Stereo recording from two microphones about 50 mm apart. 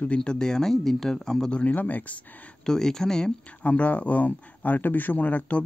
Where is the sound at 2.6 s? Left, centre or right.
Centre.